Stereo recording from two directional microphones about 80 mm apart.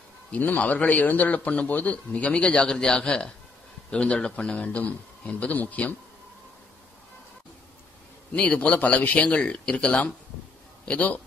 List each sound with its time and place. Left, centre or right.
0.3 s a man's voice: centre
8.3 s a man's voice: centre